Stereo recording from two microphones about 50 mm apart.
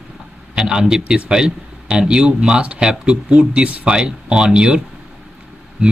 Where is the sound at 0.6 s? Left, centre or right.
Centre.